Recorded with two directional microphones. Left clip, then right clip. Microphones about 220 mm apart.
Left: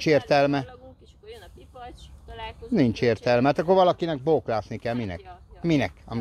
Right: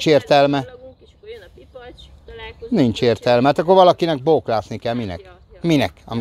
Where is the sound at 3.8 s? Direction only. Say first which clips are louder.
Right 8 dB; 30° right (ahead or behind).